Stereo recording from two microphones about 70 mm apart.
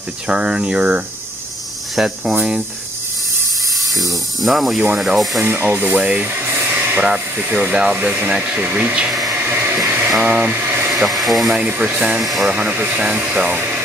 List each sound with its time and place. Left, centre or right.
0.3 s speech: centre
3.7 s speech: centre
5.4 s speech: right
6.2 s hair dryer: right
7.0 s speech: right
9.3 s a sound: right
10.2 s speech: right
10.5 s a sound: right
11.1 s speech: centre
12.4 s speech: right